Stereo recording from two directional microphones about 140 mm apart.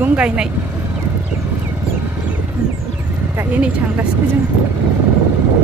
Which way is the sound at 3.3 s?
10° right (ahead or behind).